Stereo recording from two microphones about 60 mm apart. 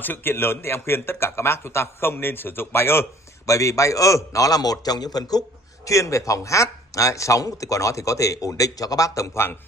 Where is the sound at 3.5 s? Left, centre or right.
Left.